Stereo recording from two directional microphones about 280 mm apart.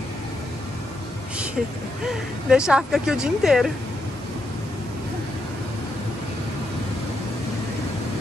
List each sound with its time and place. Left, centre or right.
2.0 s speech: centre